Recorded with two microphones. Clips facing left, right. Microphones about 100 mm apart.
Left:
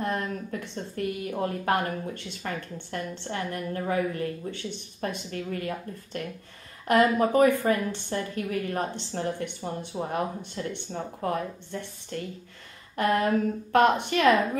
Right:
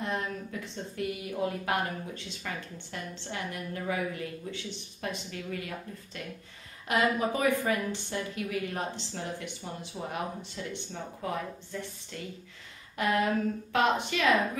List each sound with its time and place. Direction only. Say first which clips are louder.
0.0 s a woman's voice: left 4 dB; 50° left (ahead or behind)